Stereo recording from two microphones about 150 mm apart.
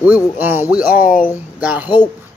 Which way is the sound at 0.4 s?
15° right (ahead or behind).